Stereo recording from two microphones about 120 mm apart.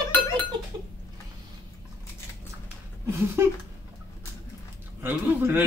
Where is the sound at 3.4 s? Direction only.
20° right (ahead or behind).